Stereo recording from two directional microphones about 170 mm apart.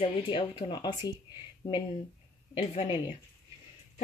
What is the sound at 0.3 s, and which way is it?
Speech, 30° left (ahead or behind).